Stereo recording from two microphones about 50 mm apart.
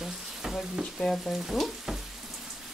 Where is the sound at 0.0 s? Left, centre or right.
Centre.